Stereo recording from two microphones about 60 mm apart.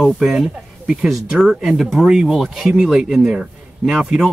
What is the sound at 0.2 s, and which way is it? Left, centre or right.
Speech, centre.